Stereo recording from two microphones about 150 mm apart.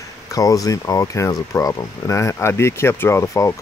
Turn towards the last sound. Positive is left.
turn(degrees=20)  # may be behind; listen again after turning